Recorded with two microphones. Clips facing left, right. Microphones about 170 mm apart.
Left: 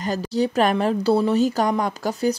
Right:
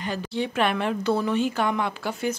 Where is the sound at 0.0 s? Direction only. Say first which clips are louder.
Left 6 dB; 40° left (ahead or behind).